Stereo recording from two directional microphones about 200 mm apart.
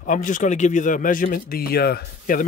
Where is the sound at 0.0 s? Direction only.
40° left (ahead or behind).